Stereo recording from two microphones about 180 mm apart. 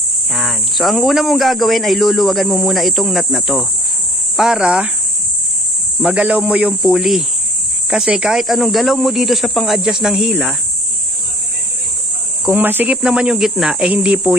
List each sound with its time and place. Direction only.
0.3 s speech: centre (ahead or behind)
5.9 s speech: 10° right (ahead or behind)
12.4 s speech: 10° right (ahead or behind)